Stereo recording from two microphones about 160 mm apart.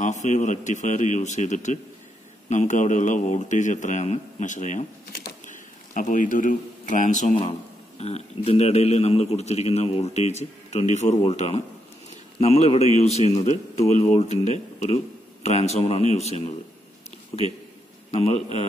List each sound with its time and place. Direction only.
0.0 s a man's voice: 45° left (ahead or behind)
5.9 s a man's voice: 55° left (ahead or behind)
17.3 s speech: 30° left (ahead or behind)
18.1 s a man's voice: 40° left (ahead or behind)